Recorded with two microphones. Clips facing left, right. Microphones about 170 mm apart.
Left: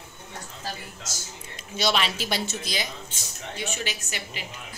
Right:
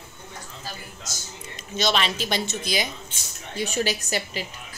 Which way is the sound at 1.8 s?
10° left (ahead or behind).